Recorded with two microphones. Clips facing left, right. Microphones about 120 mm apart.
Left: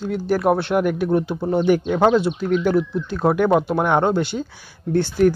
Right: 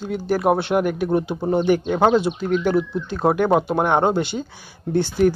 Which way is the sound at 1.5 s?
5° left (ahead or behind).